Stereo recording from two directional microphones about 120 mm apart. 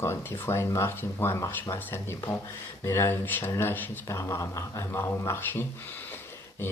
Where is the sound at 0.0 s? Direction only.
20° left (ahead or behind).